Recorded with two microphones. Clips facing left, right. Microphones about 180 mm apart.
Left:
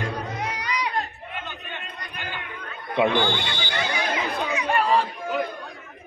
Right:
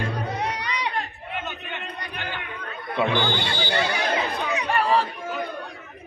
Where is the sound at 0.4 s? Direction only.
30° right (ahead or behind).